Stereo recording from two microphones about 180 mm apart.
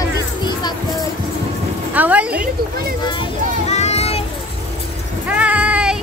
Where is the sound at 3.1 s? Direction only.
35° left (ahead or behind).